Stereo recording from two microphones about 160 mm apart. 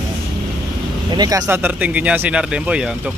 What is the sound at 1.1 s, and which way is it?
Speech, 25° right (ahead or behind).